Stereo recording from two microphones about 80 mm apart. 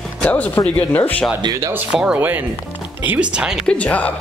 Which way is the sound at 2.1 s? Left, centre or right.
Right.